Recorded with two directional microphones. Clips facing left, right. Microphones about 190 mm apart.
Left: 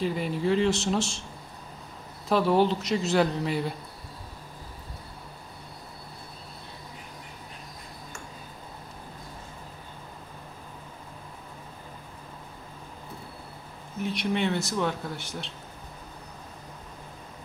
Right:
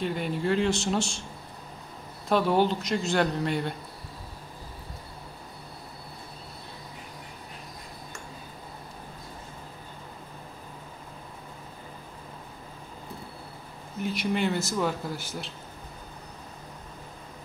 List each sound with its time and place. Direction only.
0.0 s speech: centre (ahead or behind)
2.2 s speech: centre (ahead or behind)
13.9 s speech: centre (ahead or behind)